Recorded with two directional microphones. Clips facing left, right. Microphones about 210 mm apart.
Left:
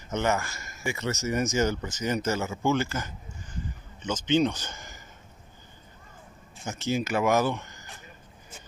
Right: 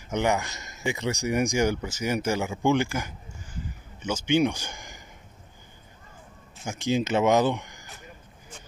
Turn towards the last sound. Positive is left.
turn(degrees=-15)  # may be behind; listen again after turning